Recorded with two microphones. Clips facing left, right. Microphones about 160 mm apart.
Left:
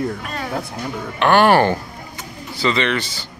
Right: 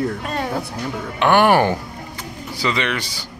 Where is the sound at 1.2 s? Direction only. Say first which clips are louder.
Left 1 dB; 15° right (ahead or behind).